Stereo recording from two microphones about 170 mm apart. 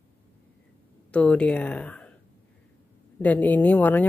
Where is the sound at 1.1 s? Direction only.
5° left (ahead or behind).